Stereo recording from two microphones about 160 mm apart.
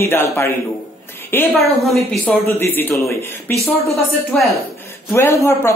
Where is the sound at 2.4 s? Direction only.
10° left (ahead or behind).